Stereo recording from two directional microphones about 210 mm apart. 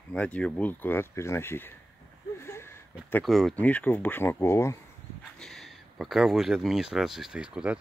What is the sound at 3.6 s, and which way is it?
Speech, 5° left (ahead or behind).